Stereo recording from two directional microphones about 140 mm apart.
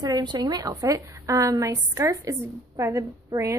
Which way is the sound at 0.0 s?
30° right (ahead or behind).